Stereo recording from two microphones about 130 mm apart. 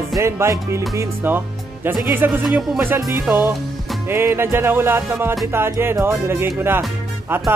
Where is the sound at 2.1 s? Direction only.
15° right (ahead or behind).